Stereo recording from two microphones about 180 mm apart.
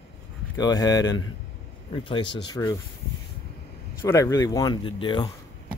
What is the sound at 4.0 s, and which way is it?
Speech, 15° left (ahead or behind).